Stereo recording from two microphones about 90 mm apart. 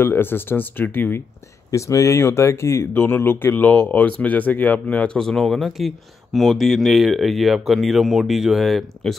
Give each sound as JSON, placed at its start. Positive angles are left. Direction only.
{"t": 0.0, "sound": "speech", "side_deg": 25}
{"t": 1.7, "sound": "speech", "side_deg": 35}